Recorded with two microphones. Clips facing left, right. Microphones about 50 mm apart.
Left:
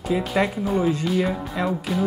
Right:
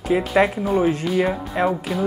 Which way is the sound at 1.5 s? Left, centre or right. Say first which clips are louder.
Right 6 dB; right.